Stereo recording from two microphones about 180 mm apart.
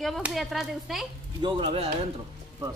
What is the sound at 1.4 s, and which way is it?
Speech, 30° right (ahead or behind).